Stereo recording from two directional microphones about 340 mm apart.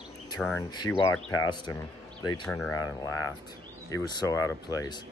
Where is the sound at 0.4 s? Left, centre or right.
Centre.